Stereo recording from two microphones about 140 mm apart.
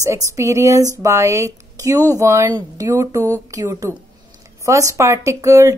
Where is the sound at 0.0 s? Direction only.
20° right (ahead or behind).